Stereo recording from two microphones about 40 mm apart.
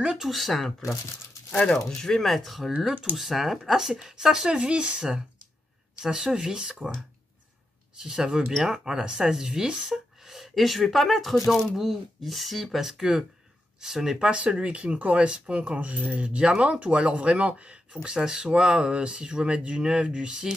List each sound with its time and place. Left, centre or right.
0.1 s speech: centre
2.0 s speech: centre
2.2 s speech: centre
4.5 s speech: right
6.0 s speech: centre
8.0 s speech: centre
8.5 s speech: centre
9.8 s speech: centre
12.8 s speech: centre
14.6 s speech: right
18.0 s speech: centre